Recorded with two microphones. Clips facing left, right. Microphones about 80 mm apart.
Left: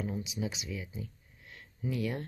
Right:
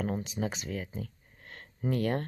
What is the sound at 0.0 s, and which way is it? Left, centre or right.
Speech, right.